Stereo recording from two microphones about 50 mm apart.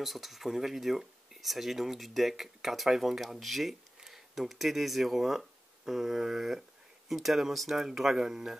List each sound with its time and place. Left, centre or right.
0.0 s speech: centre